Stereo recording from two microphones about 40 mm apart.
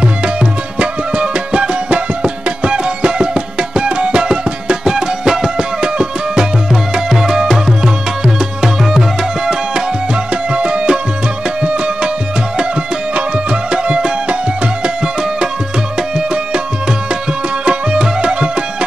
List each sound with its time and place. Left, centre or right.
0.0 s music: right
6.7 s music: centre
10.3 s music: right
13.1 s music: right
16.0 s music: centre
17.6 s music: right